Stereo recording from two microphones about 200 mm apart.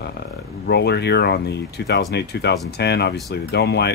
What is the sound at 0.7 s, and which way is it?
Speech, 55° left (ahead or behind).